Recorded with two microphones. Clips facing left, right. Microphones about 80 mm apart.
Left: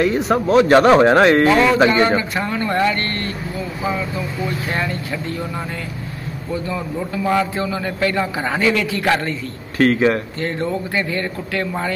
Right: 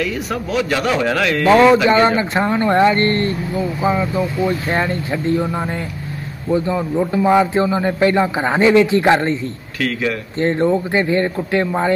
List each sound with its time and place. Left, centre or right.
0.0 s speech: left
1.9 s a man's voice: right
9.8 s speech: left
10.4 s a man's voice: right